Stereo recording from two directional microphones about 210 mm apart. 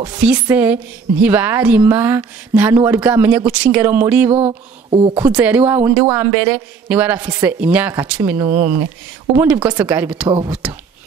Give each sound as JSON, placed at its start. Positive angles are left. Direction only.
{"t": 0.2, "sound": "speech", "side_deg": -5}
{"t": 4.3, "sound": "speech", "side_deg": -25}
{"t": 5.2, "sound": "speech", "side_deg": -10}
{"t": 8.5, "sound": "speech", "side_deg": -40}
{"t": 9.4, "sound": "speech", "side_deg": -5}